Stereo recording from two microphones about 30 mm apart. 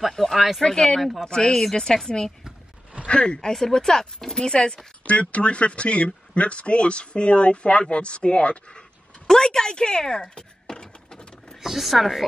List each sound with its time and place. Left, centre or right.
0.2 s a sound: centre
0.6 s speech: centre
3.1 s speech: left
3.5 s speech: centre
5.0 s speech: left
9.3 s a sound: centre
11.5 s speech: centre